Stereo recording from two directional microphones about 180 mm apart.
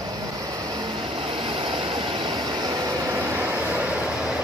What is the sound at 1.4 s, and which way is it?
Vehicle, 30° right (ahead or behind).